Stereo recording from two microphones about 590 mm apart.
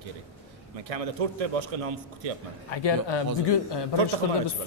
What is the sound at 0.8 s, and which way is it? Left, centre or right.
Speech, right.